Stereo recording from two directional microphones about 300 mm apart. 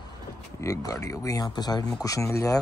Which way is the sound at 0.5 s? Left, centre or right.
Centre.